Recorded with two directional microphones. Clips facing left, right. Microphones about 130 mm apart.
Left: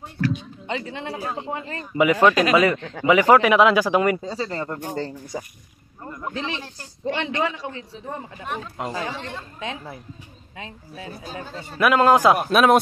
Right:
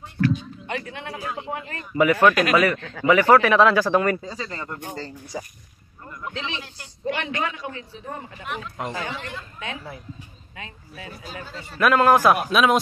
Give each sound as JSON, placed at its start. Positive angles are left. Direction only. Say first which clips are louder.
{"t": 0.7, "sound": "a man's voice", "louder": "left 3 dB", "side_deg": 25}
{"t": 2.0, "sound": "a man's voice", "louder": "left 1 dB", "side_deg": 15}
{"t": 3.1, "sound": "speech", "louder": "left 1 dB", "side_deg": 15}
{"t": 4.2, "sound": "a man's voice", "louder": "left 5 dB", "side_deg": 30}
{"t": 4.9, "sound": "speech", "louder": "left 4 dB", "side_deg": 55}
{"t": 6.0, "sound": "a man's voice", "louder": "left 3 dB", "side_deg": 35}
{"t": 12.4, "sound": "speech", "louder": "left 3 dB", "side_deg": 55}